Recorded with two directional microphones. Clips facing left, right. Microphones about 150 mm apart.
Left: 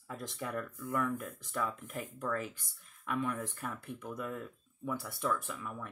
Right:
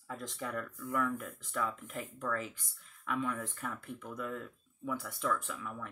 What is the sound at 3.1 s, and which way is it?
Speech, 15° left (ahead or behind).